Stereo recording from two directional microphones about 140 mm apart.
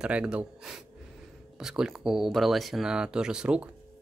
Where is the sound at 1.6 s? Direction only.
5° right (ahead or behind).